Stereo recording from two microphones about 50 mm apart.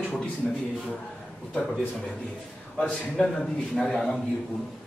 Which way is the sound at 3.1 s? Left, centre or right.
Centre.